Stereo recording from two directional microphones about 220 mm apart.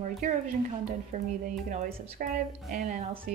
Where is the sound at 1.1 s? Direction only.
30° right (ahead or behind).